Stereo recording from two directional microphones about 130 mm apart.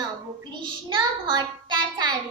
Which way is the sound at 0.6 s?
40° right (ahead or behind).